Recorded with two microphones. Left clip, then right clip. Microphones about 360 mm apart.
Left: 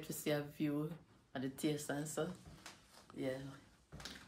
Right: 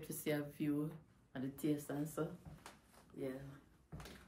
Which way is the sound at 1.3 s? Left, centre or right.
Left.